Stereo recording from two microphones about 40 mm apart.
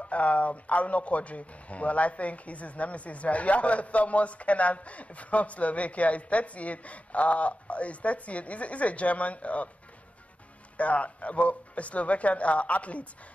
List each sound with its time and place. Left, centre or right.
0.0 s speech: left
10.8 s speech: left